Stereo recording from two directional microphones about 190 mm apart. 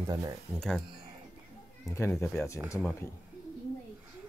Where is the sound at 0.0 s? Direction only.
20° right (ahead or behind).